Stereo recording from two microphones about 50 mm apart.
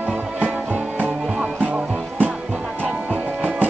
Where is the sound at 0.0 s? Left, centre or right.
Right.